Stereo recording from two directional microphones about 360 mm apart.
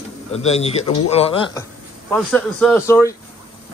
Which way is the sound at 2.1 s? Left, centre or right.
Centre.